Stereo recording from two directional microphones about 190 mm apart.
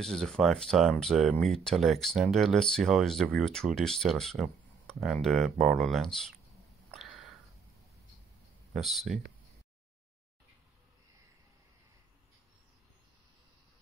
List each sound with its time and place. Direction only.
0.0 s speech: centre (ahead or behind)
6.9 s a sound: centre (ahead or behind)
8.7 s speech: centre (ahead or behind)